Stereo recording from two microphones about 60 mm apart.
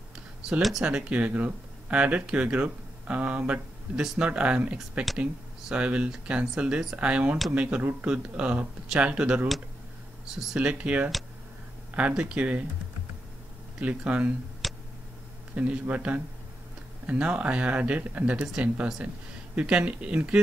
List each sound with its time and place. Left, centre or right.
0.6 s speech: centre
0.8 s speech: centre
13.7 s speech: centre
14.6 s tick: centre
15.5 s speech: right